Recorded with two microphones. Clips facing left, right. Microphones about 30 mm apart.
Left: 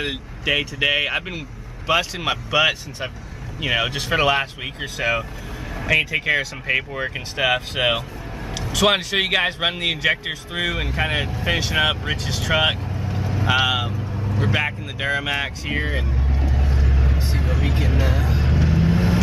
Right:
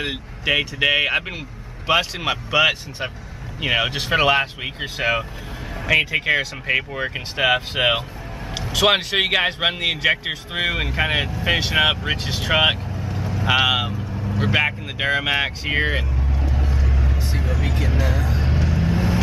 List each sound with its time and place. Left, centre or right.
0.0 s speech: centre; by 5.2 s right
5.8 s speech: centre
8.5 s vehicle: right
8.8 s speech: centre
10.2 s speech: centre
13.0 s vehicle: centre
13.5 s speech: centre
16.6 s vehicle: centre